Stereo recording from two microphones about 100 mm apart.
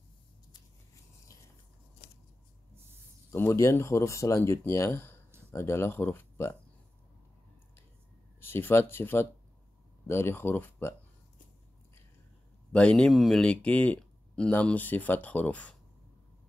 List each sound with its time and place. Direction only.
3.3 s speech: 30° left (ahead or behind)
8.4 s speech: 20° left (ahead or behind)
12.7 s speech: 10° left (ahead or behind)